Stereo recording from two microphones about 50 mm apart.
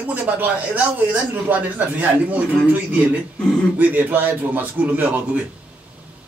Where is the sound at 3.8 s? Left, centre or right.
Right.